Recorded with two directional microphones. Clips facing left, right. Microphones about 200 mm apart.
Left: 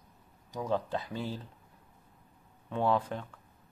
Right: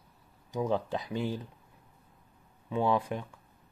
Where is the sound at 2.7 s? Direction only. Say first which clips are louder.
Right 1 dB; 10° right (ahead or behind).